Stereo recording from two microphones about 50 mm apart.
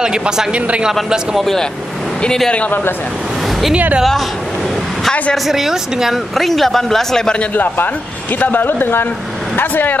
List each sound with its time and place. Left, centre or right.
0.0 s speech: centre
1.4 s speech: centre
3.7 s a woman's voice: right
5.5 s speech: centre
6.3 s speech: centre
7.5 s speech: left